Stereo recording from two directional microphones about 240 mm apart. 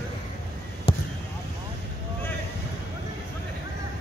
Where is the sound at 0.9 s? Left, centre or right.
Left.